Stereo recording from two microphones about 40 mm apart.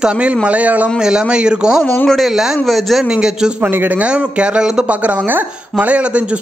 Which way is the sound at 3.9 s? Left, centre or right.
Right.